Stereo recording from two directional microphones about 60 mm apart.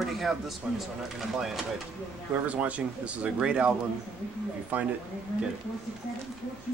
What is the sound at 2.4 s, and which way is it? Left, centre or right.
Speech, right.